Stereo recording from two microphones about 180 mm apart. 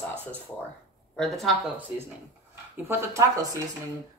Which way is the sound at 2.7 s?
15° right (ahead or behind).